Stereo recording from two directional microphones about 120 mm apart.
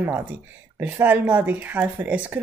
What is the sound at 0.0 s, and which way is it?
Speech, 15° right (ahead or behind).